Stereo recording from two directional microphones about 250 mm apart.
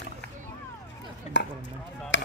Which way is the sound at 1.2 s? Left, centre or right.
Left.